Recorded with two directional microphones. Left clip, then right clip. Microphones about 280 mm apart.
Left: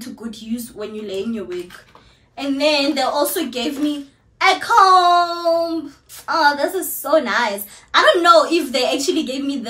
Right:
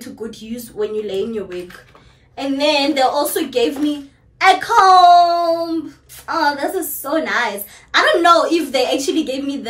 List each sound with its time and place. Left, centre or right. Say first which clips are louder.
0.7 s a woman's voice: right 8 dB; centre
2.3 s a woman's voice: right 1 dB; centre